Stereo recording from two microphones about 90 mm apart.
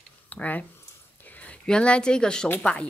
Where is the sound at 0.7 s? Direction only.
20° left (ahead or behind).